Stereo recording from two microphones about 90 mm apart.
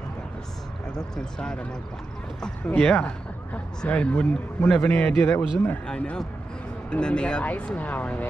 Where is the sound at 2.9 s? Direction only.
15° left (ahead or behind).